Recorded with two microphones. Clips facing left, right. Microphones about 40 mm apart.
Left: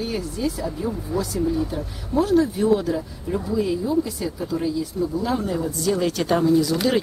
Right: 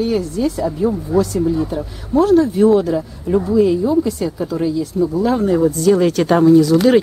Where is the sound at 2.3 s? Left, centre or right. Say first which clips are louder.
Right 7 dB; centre.